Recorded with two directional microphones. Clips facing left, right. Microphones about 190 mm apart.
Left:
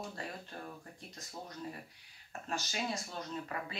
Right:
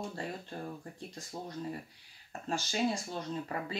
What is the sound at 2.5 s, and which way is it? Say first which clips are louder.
Speech: right 6 dB; 30° right (ahead or behind).